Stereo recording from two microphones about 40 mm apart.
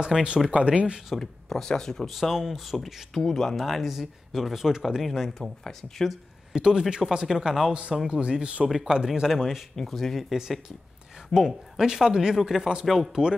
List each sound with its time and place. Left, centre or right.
0.1 s speech: centre
0.5 s speech: right
1.2 s speech: centre
2.0 s speech: centre
2.3 s speech: centre
2.8 s speech: centre
3.6 s speech: centre
5.4 s speech: centre
6.5 s speech: centre
7.2 s speech: centre
8.1 s speech: right
9.8 s speech: centre
11.3 s speech: centre
13.1 s speech: centre